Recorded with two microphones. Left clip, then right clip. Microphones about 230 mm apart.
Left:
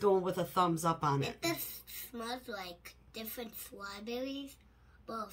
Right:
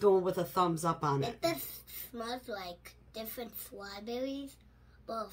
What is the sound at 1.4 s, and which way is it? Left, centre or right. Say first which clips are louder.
Speech: right 3 dB; centre.